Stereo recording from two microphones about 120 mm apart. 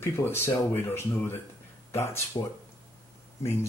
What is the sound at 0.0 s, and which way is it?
Speech, 20° left (ahead or behind).